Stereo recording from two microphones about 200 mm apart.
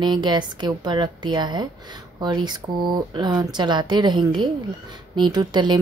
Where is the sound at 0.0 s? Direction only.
20° right (ahead or behind).